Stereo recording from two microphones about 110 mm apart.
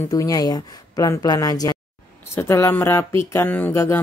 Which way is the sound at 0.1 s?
35° left (ahead or behind).